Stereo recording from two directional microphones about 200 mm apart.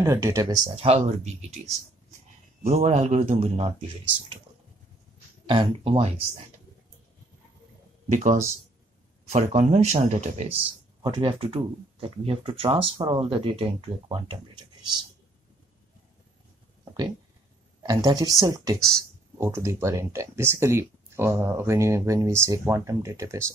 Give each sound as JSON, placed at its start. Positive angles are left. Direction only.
{"t": 0.0, "sound": "speech", "side_deg": -15}
{"t": 0.7, "sound": "speech", "side_deg": -30}
{"t": 2.6, "sound": "speech", "side_deg": -30}
{"t": 5.5, "sound": "speech", "side_deg": -25}
{"t": 8.1, "sound": "speech", "side_deg": -40}
{"t": 11.0, "sound": "speech", "side_deg": -25}
{"t": 17.8, "sound": "speech", "side_deg": -20}